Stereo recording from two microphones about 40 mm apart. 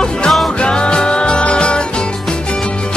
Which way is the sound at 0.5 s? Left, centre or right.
Left.